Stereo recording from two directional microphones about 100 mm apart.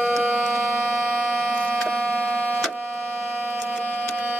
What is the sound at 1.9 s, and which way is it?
Siren, 10° left (ahead or behind).